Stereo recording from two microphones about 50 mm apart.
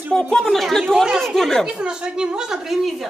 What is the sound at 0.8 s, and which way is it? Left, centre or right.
Speech, centre.